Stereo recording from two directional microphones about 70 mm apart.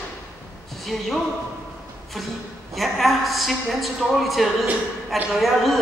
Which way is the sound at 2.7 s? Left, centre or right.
Centre.